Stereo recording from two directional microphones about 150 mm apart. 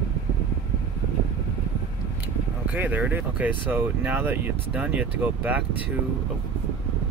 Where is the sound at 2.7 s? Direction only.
10° right (ahead or behind).